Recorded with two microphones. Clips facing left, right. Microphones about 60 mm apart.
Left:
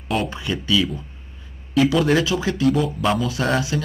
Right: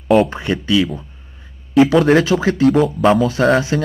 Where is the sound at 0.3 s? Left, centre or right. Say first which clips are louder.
Right 5 dB; right.